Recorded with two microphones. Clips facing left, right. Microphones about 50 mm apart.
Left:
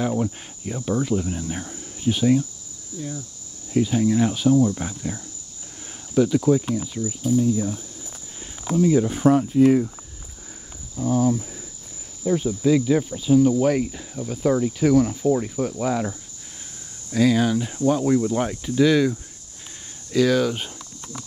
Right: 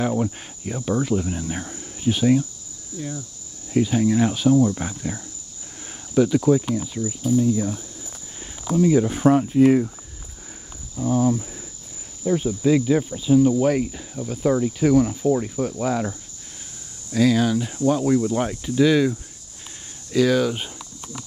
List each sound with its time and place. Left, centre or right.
0.0 s speech: right
3.7 s speech: right
7.3 s speech: right
8.8 s speech: right
9.1 s speech: right
11.0 s speech: centre
12.8 s cricket: centre
17.1 s speech: centre
18.4 s speech: centre
20.1 s cricket: centre